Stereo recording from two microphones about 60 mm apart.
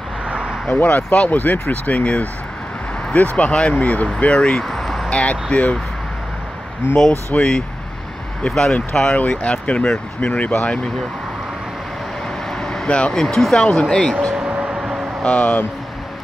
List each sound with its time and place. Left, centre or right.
0.3 s vehicle: centre
0.7 s speech: left
4.2 s a sound: centre
5.1 s speech: left
7.3 s speech: centre
12.5 s vehicle: centre
13.2 s speech: centre
14.3 s vehicle: centre
15.2 s speech: left